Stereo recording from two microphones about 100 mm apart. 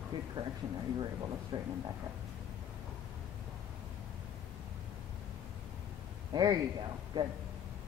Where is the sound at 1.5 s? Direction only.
60° right (ahead or behind).